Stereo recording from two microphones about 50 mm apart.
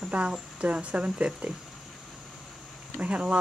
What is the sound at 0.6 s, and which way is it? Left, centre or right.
Speech, right.